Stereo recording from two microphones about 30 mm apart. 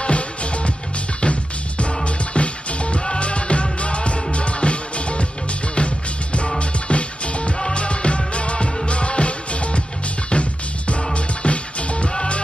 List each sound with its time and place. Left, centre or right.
0.0 s music: left